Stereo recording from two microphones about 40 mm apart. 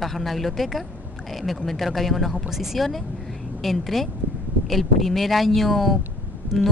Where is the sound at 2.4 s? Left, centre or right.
Centre.